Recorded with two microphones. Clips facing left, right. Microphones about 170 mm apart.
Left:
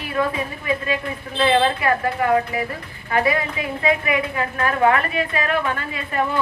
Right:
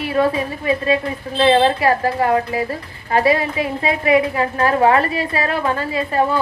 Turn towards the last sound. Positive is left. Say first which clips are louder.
# right 6 dB
turn(degrees=-35)  # may be behind; listen again after turning